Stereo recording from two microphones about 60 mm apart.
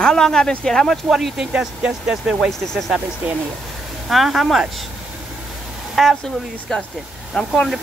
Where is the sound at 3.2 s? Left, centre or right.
Right.